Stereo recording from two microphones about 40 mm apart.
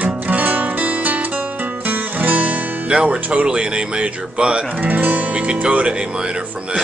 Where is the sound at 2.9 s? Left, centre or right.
Right.